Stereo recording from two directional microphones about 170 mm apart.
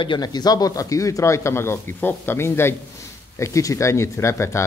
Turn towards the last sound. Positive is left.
turn(degrees=15)  # may be behind; listen again after turning